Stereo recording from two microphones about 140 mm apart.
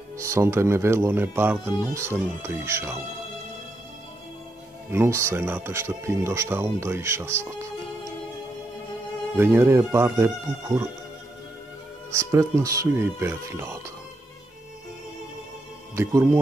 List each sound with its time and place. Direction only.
0.2 s speech: 20° right (ahead or behind)
4.9 s speech: 20° right (ahead or behind)
9.4 s speech: 15° right (ahead or behind)
12.1 s speech: 20° right (ahead or behind)
16.0 s speech: 20° right (ahead or behind)